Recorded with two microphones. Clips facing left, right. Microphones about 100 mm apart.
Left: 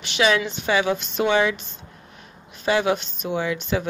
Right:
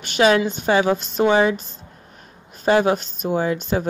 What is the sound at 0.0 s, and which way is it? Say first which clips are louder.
Speech: right 4 dB; 45° right (ahead or behind).